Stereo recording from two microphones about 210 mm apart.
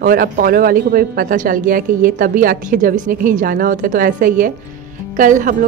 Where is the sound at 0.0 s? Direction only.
40° right (ahead or behind).